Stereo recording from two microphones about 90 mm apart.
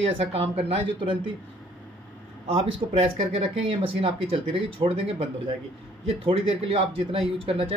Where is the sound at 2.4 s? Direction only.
90° right.